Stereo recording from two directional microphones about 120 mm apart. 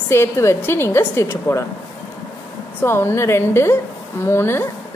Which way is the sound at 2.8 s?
20° left (ahead or behind).